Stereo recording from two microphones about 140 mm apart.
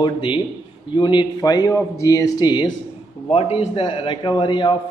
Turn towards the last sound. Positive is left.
turn(degrees=35)  # may be behind; listen again after turning